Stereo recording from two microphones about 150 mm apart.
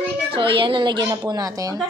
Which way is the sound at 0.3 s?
35° right (ahead or behind).